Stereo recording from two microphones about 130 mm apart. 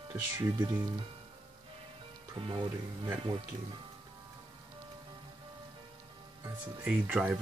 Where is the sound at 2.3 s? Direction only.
40° right (ahead or behind).